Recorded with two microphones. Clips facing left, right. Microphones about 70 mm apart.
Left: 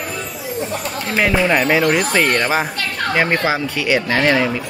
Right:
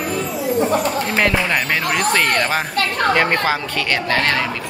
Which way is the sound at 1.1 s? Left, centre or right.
Centre.